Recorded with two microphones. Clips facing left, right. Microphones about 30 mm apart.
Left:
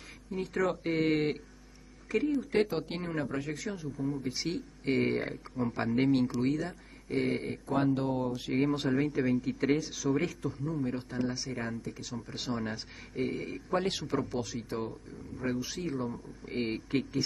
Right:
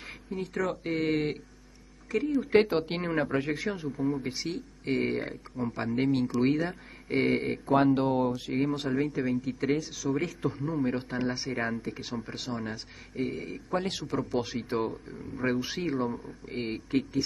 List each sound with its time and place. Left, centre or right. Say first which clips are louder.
0.3 s speech: even; centre
2.5 s speech: right 6 dB; right
4.4 s speech: even; centre
6.4 s speech: right 4 dB; right
8.3 s speech: right 1 dB; centre
10.4 s speech: right 4 dB; right
12.4 s speech: even; centre
14.4 s speech: right 5 dB; right
16.4 s speech: left 1 dB; centre